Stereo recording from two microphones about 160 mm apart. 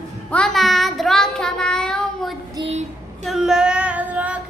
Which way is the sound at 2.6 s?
25° right (ahead or behind).